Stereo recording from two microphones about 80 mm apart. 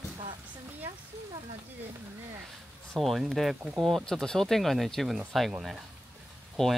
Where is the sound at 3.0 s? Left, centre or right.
Centre.